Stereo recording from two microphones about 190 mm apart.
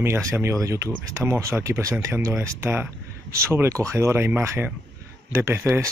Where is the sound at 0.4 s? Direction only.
15° right (ahead or behind).